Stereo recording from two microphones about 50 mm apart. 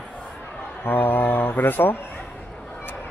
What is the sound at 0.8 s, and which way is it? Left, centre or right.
Speech, left.